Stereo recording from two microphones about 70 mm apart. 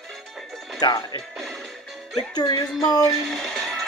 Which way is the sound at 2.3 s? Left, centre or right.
Left.